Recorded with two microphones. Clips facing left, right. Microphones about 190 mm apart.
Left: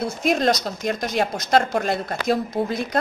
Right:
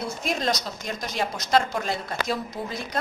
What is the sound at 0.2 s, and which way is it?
A woman's voice, 60° left (ahead or behind).